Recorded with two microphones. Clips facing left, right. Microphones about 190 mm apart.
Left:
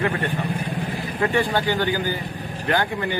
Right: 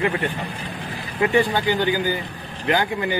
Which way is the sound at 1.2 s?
15° right (ahead or behind).